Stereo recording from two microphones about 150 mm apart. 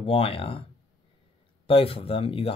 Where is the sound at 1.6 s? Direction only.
40° left (ahead or behind).